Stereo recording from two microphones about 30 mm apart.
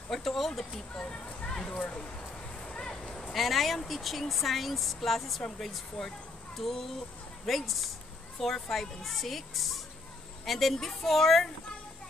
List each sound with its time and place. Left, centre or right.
0.1 s speech: centre
1.1 s speech: left
1.8 s speech: left
2.6 s vehicle: left
3.3 s speech: centre
6.0 s speech: left
6.5 s speech: centre